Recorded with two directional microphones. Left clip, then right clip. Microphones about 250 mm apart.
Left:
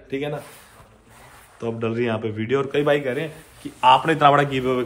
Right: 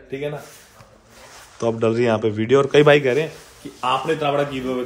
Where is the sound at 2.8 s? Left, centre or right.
Right.